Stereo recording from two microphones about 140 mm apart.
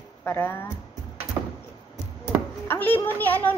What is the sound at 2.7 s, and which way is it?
Speech, 15° left (ahead or behind).